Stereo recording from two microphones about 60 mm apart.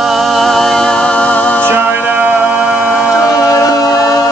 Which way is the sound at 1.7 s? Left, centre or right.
Right.